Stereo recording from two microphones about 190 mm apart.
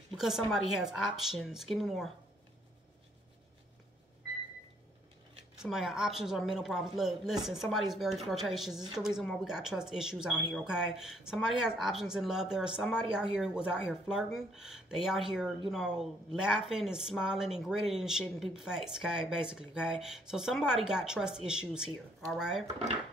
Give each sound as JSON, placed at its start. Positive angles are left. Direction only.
{"t": 0.2, "sound": "speech", "side_deg": 0}
{"t": 5.6, "sound": "speech", "side_deg": 0}